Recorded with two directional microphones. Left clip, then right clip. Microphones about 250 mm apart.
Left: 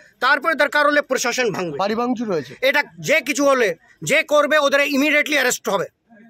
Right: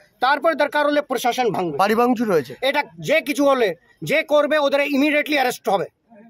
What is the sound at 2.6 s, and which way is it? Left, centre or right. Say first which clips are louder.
Speech: left 3 dB; centre.